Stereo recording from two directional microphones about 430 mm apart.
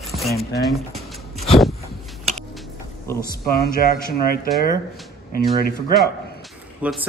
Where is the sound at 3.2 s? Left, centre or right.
Left.